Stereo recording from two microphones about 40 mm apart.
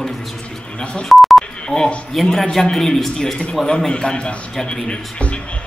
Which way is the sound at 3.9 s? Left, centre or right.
Left.